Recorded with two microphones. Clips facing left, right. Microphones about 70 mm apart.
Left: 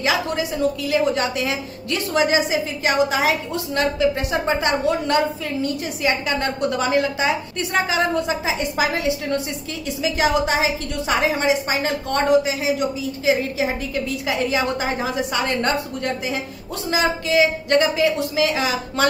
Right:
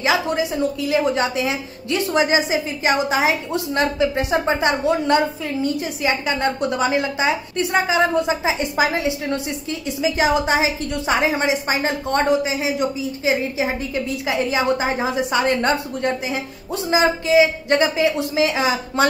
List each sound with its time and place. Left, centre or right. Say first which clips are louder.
0.0 s a woman's voice: right 2 dB; centre
10.0 s a woman's voice: right 1 dB; centre
13.2 s a woman's voice: left 1 dB; centre